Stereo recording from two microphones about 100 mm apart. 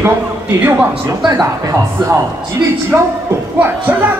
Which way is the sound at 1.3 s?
35° right (ahead or behind).